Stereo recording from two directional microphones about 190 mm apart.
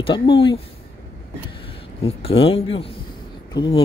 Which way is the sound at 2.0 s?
30° left (ahead or behind).